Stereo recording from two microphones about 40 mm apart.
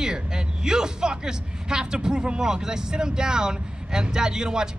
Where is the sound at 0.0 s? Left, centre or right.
Centre.